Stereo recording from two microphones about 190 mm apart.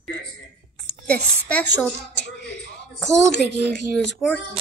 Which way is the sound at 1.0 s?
5° left (ahead or behind).